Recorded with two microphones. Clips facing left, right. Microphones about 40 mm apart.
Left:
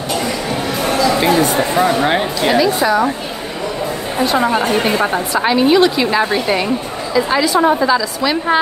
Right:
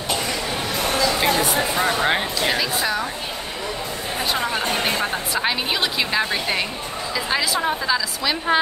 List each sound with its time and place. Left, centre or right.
1.0 s a sound: centre
1.8 s a woman's voice: centre
4.4 s a woman's voice: centre
5.3 s a woman's voice: centre